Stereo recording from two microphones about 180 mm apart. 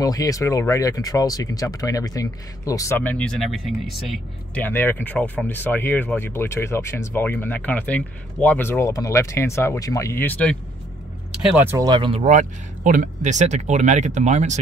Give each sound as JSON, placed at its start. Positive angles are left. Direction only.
{"t": 0.0, "sound": "speech", "side_deg": 20}
{"t": 4.6, "sound": "speech", "side_deg": 10}
{"t": 11.5, "sound": "speech", "side_deg": -10}
{"t": 12.2, "sound": "speech", "side_deg": -45}